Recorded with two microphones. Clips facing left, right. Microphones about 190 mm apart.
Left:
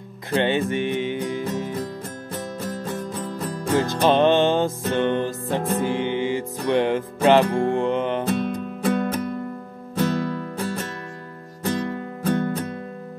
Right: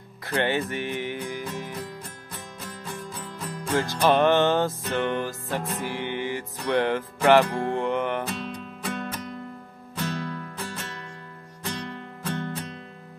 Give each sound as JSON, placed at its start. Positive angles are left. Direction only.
{"t": 0.3, "sound": "music", "side_deg": 20}
{"t": 2.3, "sound": "music", "side_deg": 45}
{"t": 4.0, "sound": "music", "side_deg": 20}
{"t": 8.3, "sound": "music", "side_deg": 50}